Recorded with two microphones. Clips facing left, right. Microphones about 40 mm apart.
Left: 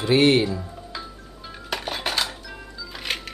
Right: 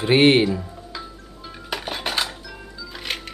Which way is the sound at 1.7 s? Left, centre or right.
Centre.